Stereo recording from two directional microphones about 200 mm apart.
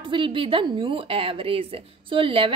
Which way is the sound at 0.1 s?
25° right (ahead or behind).